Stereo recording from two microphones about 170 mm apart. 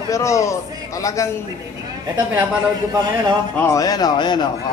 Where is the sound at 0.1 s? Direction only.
20° left (ahead or behind).